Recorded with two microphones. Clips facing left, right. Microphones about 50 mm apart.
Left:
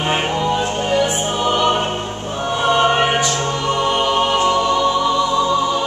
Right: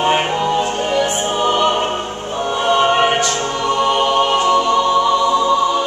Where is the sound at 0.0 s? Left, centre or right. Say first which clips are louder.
Right 3 dB; centre.